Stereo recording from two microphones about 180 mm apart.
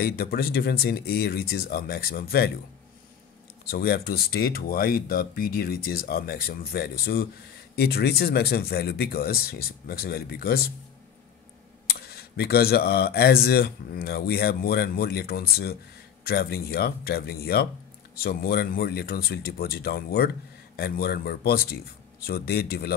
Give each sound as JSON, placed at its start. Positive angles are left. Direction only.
{"t": 0.0, "sound": "speech", "side_deg": 60}
{"t": 3.6, "sound": "speech", "side_deg": 60}
{"t": 11.9, "sound": "speech", "side_deg": 60}